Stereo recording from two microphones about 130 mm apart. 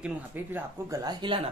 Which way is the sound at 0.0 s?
15° right (ahead or behind).